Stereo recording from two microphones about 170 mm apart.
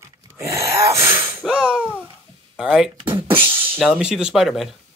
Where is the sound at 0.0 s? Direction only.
15° right (ahead or behind).